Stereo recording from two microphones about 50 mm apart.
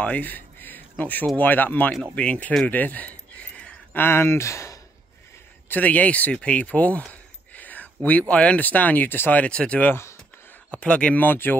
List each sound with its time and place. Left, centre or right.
0.0 s speech: left
2.1 s speech: left
2.7 s a sound: left
3.9 s speech: left
5.7 s speech: left
9.3 s speech: left
11.1 s speech: left